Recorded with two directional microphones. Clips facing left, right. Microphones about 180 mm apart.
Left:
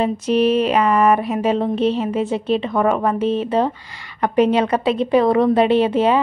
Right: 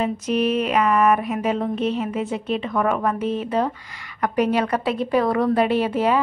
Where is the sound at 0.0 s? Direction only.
30° left (ahead or behind).